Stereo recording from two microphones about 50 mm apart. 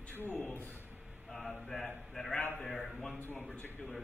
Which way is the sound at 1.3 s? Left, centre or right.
Centre.